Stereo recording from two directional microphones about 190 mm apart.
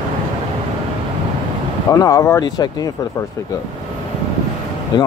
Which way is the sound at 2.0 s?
15° left (ahead or behind).